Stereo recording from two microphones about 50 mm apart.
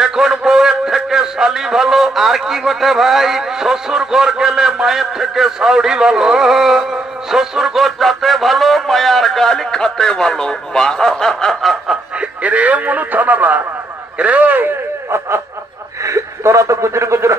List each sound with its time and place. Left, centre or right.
0.0 s a man's voice: centre
12.2 s a man's voice: right
15.0 s snicker: right
16.0 s a sound: right